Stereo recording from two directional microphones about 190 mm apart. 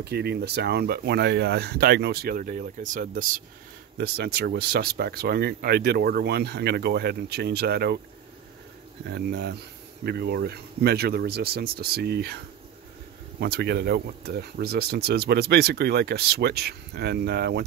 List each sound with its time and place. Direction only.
0.0 s speech: 60° right (ahead or behind)
9.0 s speech: 60° right (ahead or behind)
13.4 s speech: 60° right (ahead or behind)